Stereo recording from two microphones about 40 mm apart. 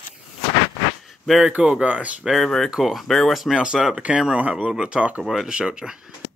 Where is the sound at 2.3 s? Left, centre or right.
Centre.